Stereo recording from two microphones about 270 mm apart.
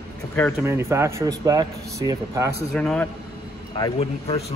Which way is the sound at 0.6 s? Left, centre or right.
Centre.